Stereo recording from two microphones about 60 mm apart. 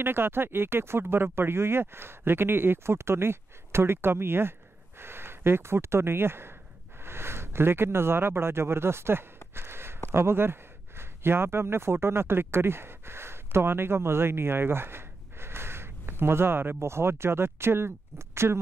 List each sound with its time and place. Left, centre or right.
0.0 s speech: right
9.6 s a sound: right
10.1 s speech: right